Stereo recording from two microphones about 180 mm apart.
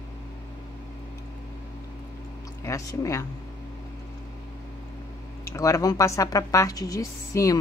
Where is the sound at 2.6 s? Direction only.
15° left (ahead or behind).